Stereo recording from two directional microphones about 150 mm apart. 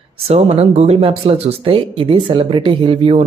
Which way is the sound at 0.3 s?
45° right (ahead or behind).